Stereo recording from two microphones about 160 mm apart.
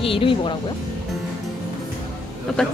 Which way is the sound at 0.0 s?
35° left (ahead or behind).